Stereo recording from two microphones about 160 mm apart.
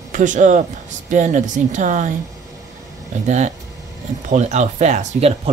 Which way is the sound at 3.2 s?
45° right (ahead or behind).